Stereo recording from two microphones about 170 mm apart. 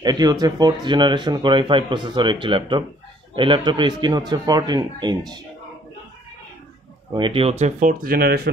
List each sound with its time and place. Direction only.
0.0 s a man's voice: 25° right (ahead or behind)
7.2 s speech: 30° right (ahead or behind)
8.0 s speech: 60° right (ahead or behind)